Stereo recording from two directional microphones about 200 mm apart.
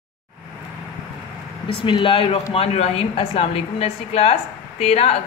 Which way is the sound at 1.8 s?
25° left (ahead or behind).